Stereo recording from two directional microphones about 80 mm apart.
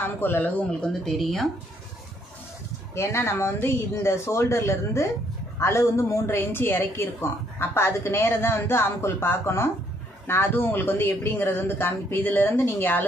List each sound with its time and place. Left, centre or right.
0.0 s speech: left; by 1.5 s centre
2.9 s a woman's voice: left